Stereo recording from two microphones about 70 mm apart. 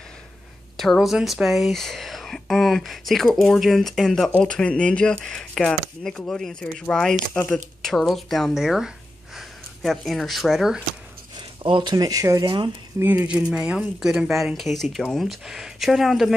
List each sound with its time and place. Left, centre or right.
0.7 s speech: centre
11.3 s speech: right
13.0 s speech: right; by 16.3 s centre